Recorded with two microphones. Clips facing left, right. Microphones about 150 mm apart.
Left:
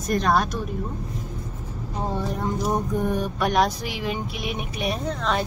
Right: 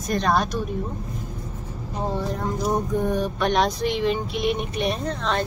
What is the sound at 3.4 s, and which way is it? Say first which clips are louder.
Speech: even; 5° left (ahead or behind).